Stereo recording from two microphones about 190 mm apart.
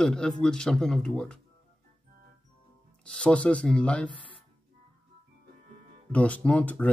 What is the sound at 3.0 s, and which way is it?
Speech, 5° left (ahead or behind).